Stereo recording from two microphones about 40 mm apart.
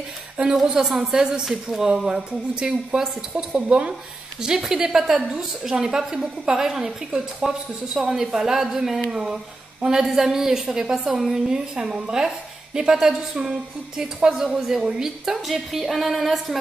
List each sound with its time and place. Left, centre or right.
0.6 s a woman's voice: centre
15.4 s a woman's voice: centre